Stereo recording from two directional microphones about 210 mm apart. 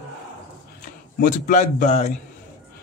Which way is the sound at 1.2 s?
35° left (ahead or behind).